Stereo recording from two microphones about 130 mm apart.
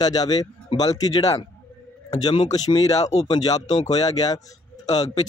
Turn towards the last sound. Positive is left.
turn(degrees=30)  # may be behind; listen again after turning